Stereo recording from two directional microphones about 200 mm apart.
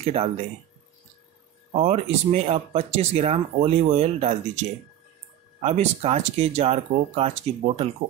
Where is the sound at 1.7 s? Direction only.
35° right (ahead or behind).